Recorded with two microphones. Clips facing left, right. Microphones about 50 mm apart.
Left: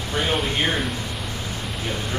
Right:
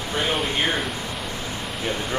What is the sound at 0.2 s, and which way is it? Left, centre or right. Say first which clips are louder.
Speech: left 1 dB; centre.